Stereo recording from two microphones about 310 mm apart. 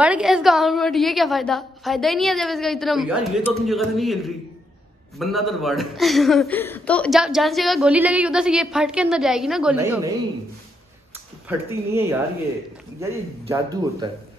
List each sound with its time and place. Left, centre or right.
0.0 s speech: centre
11.4 s speech: centre